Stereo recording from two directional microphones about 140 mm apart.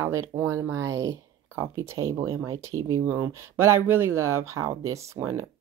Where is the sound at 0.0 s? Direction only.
20° right (ahead or behind).